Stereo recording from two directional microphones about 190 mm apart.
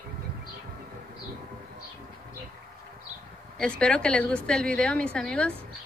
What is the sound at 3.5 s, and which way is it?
Speech, 5° left (ahead or behind).